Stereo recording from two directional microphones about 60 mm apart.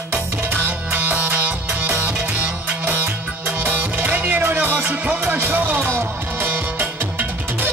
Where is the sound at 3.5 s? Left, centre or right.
Right.